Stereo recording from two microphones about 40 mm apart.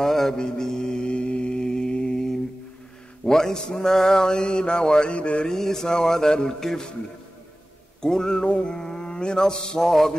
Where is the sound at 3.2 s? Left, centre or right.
Centre.